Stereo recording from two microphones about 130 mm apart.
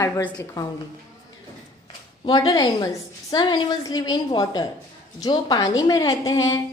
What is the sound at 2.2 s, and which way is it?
A woman's voice, 30° left (ahead or behind).